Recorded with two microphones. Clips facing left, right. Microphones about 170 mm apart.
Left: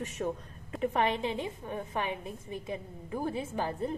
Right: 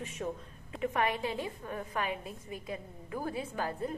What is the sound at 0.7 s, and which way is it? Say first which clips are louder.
A woman's voice: left 3 dB; 35° left (ahead or behind).